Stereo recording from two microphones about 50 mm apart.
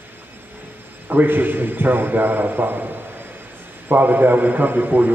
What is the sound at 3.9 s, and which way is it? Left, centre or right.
A man's voice, right.